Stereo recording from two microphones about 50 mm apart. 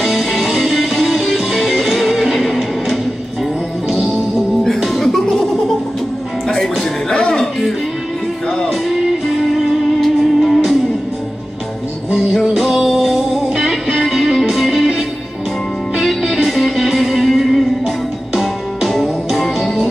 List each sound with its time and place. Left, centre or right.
0.0 s music: centre
6.8 s music: centre
8.6 s music: centre
12.1 s music: centre